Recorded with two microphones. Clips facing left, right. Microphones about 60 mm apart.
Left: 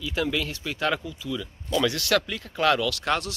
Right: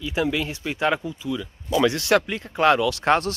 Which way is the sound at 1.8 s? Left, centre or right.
Right.